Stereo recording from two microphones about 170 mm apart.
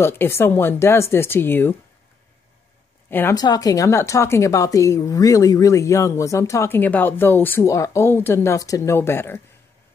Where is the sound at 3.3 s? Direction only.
20° left (ahead or behind).